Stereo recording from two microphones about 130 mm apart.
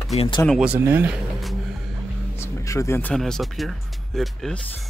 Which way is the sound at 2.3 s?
20° left (ahead or behind).